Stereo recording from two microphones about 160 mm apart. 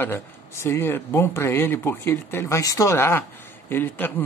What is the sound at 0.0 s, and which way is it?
Speech, 15° left (ahead or behind).